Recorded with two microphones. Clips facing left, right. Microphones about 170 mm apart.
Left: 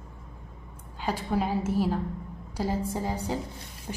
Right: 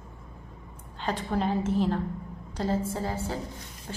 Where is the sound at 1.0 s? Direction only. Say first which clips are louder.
Even; 10° left (ahead or behind).